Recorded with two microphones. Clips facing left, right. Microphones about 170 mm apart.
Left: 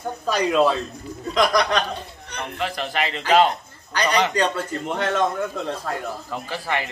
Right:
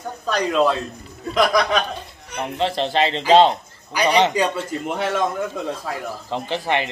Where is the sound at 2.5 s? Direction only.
30° right (ahead or behind).